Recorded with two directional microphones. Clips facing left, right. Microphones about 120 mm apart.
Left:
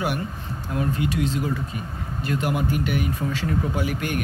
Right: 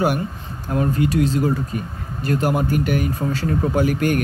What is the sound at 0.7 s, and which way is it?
A man's voice, 40° right (ahead or behind).